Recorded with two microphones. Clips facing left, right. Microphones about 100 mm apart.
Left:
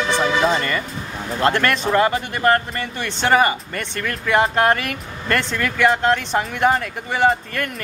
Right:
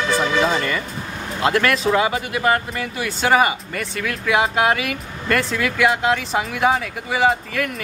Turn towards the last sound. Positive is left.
turn(degrees=0)  # may be behind; listen again after turning